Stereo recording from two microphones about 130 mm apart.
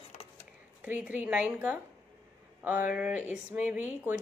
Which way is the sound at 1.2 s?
10° right (ahead or behind).